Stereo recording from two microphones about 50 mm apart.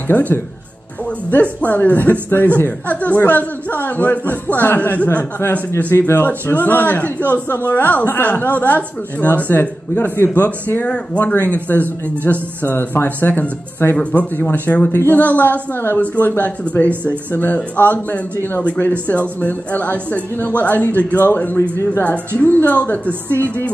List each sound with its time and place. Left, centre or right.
0.1 s speech: left
5.9 s speech: left
6.2 s speech: left
14.9 s speech: left
15.1 s speech: left